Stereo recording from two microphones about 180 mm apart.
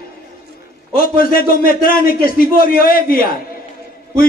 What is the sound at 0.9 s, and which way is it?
A man's voice, 55° left (ahead or behind).